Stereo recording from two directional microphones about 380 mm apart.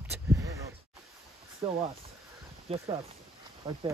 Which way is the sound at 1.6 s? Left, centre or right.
Centre.